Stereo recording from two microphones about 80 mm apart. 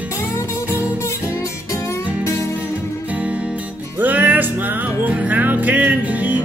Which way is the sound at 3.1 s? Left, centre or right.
Centre.